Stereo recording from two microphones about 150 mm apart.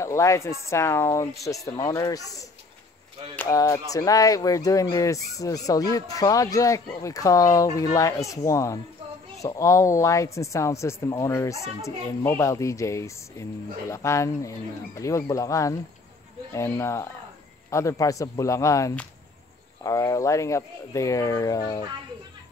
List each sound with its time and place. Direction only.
0.0 s speech: 20° left (ahead or behind)